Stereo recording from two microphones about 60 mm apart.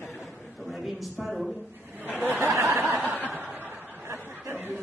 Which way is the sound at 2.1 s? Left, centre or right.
Right.